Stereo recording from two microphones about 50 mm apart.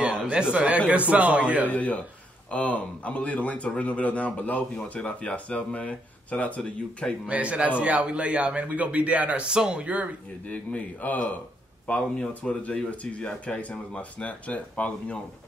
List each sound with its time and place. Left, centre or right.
0.3 s a man's voice: right
1.7 s a man's voice: left
7.2 s a man's voice: right
9.5 s speech: centre
10.4 s a man's voice: left